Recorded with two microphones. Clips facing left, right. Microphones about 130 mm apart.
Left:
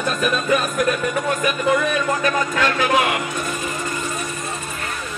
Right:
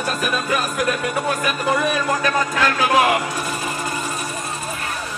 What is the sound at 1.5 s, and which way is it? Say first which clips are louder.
A man's voice: left 3 dB; 35° right (ahead or behind).